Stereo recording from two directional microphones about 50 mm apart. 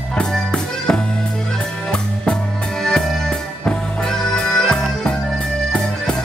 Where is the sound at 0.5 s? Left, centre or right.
Centre.